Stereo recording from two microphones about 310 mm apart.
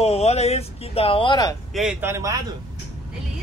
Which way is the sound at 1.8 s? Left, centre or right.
Centre.